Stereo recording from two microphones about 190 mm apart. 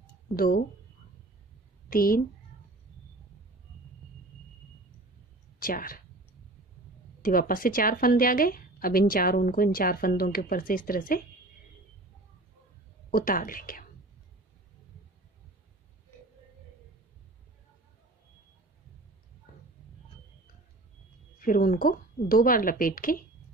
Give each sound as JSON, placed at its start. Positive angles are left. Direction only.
{"t": 1.9, "sound": "a woman's voice", "side_deg": 50}
{"t": 5.6, "sound": "speech", "side_deg": 50}
{"t": 7.2, "sound": "a woman's voice", "side_deg": 45}
{"t": 13.1, "sound": "a woman's voice", "side_deg": 45}
{"t": 21.4, "sound": "a woman's voice", "side_deg": 45}